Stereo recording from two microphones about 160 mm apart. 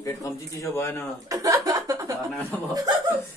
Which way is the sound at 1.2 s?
20° right (ahead or behind).